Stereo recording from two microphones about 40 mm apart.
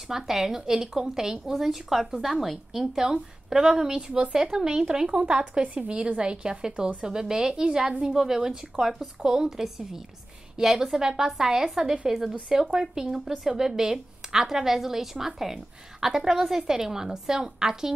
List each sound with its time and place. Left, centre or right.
0.1 s a woman's voice: centre